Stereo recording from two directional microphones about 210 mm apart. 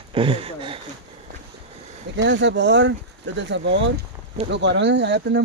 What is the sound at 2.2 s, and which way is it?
Speech, 55° right (ahead or behind).